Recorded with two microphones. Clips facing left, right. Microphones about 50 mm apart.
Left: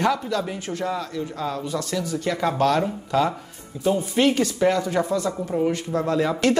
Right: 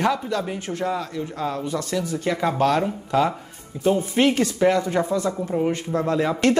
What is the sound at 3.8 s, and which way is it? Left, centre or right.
Speech, right.